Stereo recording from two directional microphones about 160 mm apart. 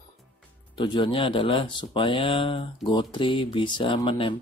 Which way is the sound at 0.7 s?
30° left (ahead or behind).